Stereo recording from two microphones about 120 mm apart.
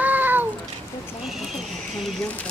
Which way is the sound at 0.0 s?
15° right (ahead or behind).